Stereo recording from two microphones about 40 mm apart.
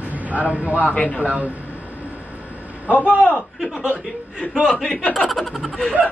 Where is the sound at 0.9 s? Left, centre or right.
Left.